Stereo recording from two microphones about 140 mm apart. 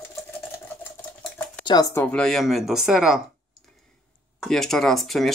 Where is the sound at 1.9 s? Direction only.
10° left (ahead or behind).